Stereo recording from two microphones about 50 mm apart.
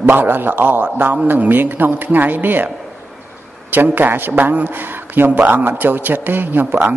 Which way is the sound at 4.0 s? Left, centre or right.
Right.